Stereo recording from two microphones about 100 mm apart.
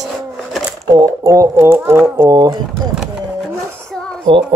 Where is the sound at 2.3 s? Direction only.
40° right (ahead or behind).